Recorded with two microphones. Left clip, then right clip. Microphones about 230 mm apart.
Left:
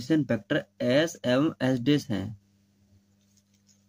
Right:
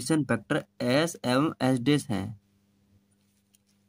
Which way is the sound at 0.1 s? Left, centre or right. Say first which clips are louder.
Left 1 dB; right.